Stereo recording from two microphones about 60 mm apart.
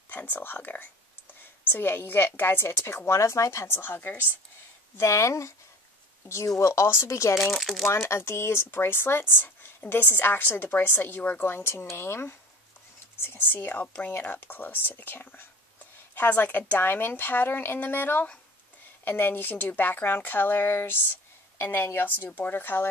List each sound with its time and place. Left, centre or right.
0.1 s speech: left
3.2 s speech: left
4.9 s speech: left
7.5 s speech: centre
7.8 s speech: left